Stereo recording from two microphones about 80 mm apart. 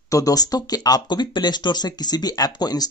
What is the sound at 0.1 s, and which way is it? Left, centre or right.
Speech, left.